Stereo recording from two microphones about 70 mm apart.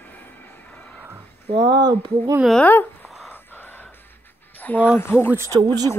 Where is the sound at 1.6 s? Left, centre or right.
Right.